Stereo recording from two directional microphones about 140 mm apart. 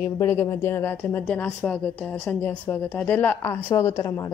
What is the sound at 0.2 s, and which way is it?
A woman's voice, 20° left (ahead or behind).